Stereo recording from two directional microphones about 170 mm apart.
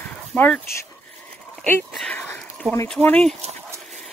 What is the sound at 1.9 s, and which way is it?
Dog, 10° left (ahead or behind).